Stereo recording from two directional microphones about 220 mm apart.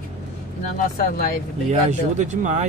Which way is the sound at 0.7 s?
40° left (ahead or behind).